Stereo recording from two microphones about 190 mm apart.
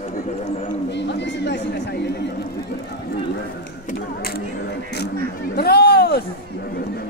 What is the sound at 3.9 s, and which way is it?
Speech, 50° left (ahead or behind).